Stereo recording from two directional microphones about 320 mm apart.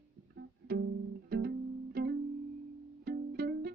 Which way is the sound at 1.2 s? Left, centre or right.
Right.